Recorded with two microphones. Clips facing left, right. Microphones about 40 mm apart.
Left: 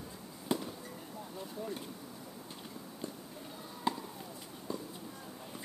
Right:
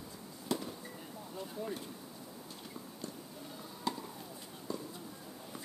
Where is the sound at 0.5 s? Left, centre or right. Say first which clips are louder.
Left 2 dB; left.